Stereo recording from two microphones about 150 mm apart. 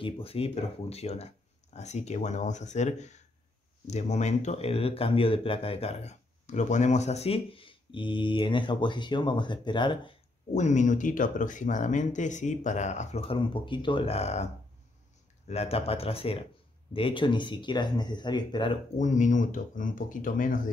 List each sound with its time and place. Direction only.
0.0 s speech: 40° left (ahead or behind)
10.5 s speech: 50° left (ahead or behind)
13.4 s speech: 35° left (ahead or behind)
18.9 s speech: 55° left (ahead or behind)